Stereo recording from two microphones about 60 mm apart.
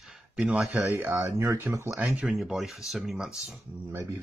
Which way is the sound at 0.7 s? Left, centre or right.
Right.